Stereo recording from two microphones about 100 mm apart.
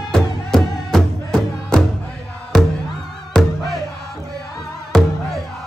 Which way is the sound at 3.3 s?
Centre (ahead or behind).